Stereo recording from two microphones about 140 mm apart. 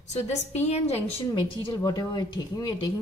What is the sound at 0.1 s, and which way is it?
A woman's voice, 50° left (ahead or behind).